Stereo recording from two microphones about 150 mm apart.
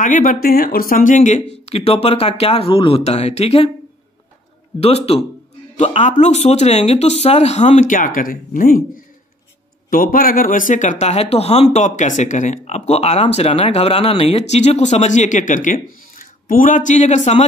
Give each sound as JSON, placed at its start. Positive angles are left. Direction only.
{"t": 0.0, "sound": "speech", "side_deg": 60}
{"t": 4.7, "sound": "speech", "side_deg": 40}